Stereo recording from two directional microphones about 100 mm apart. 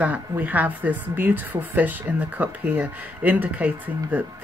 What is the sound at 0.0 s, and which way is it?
Speech, 15° right (ahead or behind).